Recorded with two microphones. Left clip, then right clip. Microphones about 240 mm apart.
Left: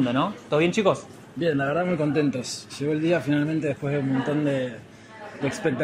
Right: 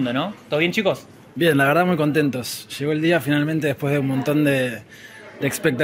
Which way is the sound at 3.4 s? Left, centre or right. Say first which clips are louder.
Right 4 dB; right.